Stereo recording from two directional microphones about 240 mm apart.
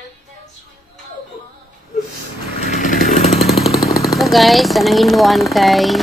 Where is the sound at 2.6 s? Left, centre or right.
Left.